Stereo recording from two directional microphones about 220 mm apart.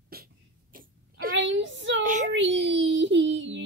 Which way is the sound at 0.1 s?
40° right (ahead or behind).